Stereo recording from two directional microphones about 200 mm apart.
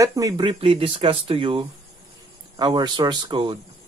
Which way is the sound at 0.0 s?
15° right (ahead or behind).